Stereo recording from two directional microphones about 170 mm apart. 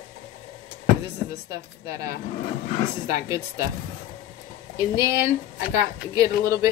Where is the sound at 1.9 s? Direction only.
20° right (ahead or behind).